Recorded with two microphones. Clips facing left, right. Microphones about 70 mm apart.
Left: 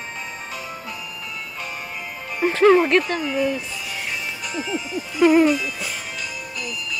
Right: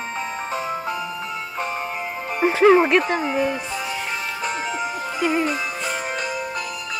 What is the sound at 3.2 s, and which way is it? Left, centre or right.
Speech, right.